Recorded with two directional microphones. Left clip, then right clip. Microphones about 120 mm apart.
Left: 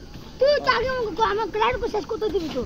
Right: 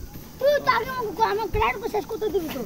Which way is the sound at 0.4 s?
45° right (ahead or behind).